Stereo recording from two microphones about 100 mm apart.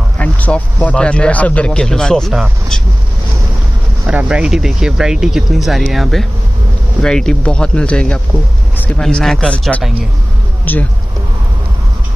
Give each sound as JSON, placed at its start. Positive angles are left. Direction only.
{"t": 0.2, "sound": "speech", "side_deg": 15}
{"t": 4.0, "sound": "speech", "side_deg": -15}
{"t": 8.7, "sound": "a sound", "side_deg": 15}
{"t": 9.0, "sound": "speech", "side_deg": 5}